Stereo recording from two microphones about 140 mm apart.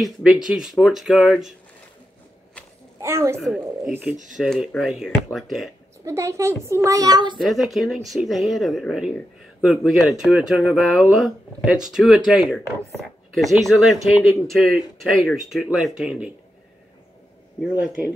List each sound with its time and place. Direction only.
0.0 s speech: 5° right (ahead or behind)
3.0 s a child's voice: 20° right (ahead or behind)
3.3 s speech: centre (ahead or behind)
3.9 s speech: 15° right (ahead or behind)
4.4 s speech: centre (ahead or behind)
6.0 s a child's voice: 20° right (ahead or behind)
7.3 s speech: centre (ahead or behind)
17.6 s speech: 5° right (ahead or behind)